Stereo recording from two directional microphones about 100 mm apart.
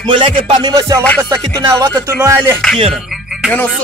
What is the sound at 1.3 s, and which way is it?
Speech, 35° right (ahead or behind).